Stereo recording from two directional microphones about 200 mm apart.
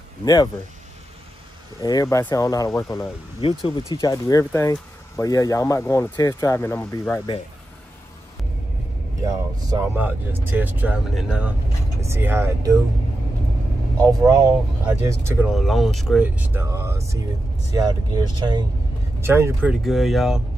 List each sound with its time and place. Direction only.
0.2 s speech: 20° left (ahead or behind)
1.8 s speech: 20° left (ahead or behind)
9.2 s speech: 15° right (ahead or behind)
14.0 s speech: 15° right (ahead or behind)
15.4 s speech: centre (ahead or behind)